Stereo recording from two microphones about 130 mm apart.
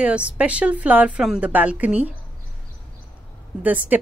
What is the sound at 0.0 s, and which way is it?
A woman's voice, 10° right (ahead or behind).